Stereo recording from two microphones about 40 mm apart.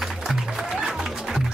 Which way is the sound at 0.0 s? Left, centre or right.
Centre.